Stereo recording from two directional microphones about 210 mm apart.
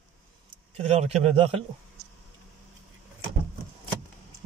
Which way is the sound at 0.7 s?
30° right (ahead or behind).